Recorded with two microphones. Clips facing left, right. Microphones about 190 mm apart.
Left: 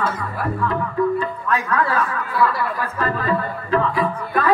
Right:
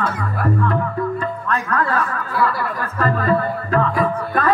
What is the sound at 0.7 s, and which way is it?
Speech, 45° right (ahead or behind).